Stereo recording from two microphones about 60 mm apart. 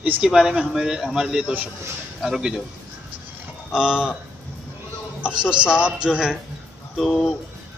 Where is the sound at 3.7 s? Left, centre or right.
Centre.